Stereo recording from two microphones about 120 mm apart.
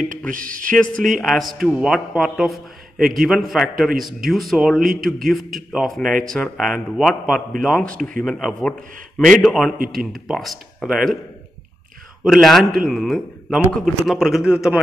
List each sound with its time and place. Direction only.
0.4 s speech: 90° right
0.7 s speech: 5° left (ahead or behind)
12.3 s a man's voice: centre (ahead or behind)